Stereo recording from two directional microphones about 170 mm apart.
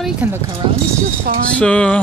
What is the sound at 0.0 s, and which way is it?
Speech, 10° right (ahead or behind).